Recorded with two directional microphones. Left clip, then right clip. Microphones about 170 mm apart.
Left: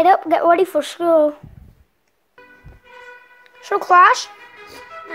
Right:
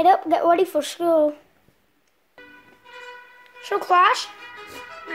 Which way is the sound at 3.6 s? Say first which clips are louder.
Left 6 dB; 20° left (ahead or behind).